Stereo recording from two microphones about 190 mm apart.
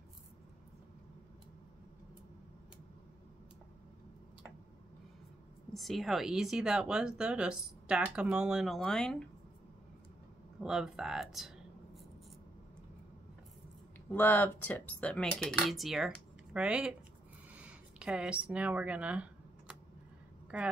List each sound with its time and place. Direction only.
5.7 s speech: centre (ahead or behind)
10.6 s speech: 5° right (ahead or behind)
14.1 s speech: 10° left (ahead or behind); by 19.2 s 5° right (ahead or behind)
20.5 s speech: 5° right (ahead or behind)